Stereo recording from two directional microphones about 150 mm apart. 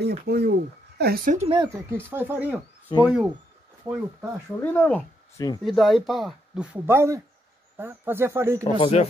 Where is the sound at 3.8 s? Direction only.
25° right (ahead or behind).